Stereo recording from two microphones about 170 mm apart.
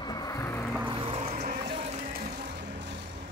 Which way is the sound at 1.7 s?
40° right (ahead or behind).